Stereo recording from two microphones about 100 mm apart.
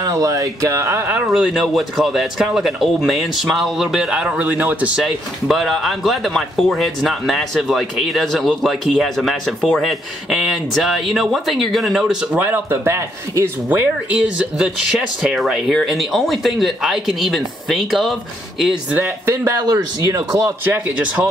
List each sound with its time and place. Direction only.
0.0 s speech: 35° right (ahead or behind)
1.2 s speech: 5° right (ahead or behind)
5.5 s speech: centre (ahead or behind); by 13.5 s 30° right (ahead or behind)
13.7 s speech: 15° right (ahead or behind); by 18.1 s centre (ahead or behind)
18.9 s speech: 20° right (ahead or behind)
19.4 s speech: 35° right (ahead or behind)
20.4 s speech: 20° right (ahead or behind)